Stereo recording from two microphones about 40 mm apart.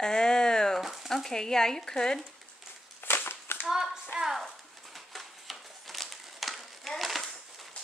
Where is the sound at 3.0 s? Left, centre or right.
Left.